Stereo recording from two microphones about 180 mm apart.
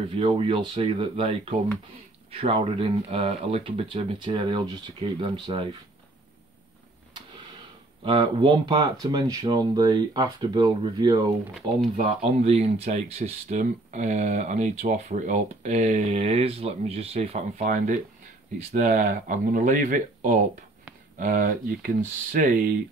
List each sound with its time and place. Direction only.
0.2 s speech: 30° right (ahead or behind)
8.0 s speech: 25° right (ahead or behind)
12.0 s speech: 35° right (ahead or behind)
17.6 s speech: 45° right (ahead or behind)